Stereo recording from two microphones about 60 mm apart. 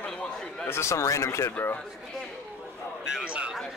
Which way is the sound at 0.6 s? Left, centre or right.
Left.